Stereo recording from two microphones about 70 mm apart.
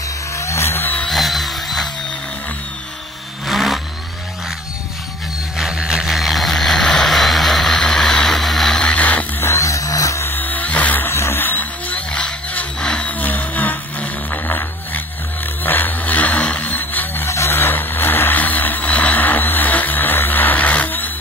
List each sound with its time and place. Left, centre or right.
0.4 s vehicle: left
1.0 s a sound: centre
3.4 s vehicle: centre
5.6 s vehicle: centre
8.9 s a sound: left
9.4 s music: left
10.2 s music: left
11.1 s vehicle: left
15.6 s a sound: left
17.3 s vehicle: left